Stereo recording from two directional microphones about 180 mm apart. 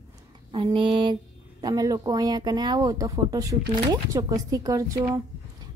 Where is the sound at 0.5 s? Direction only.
30° right (ahead or behind).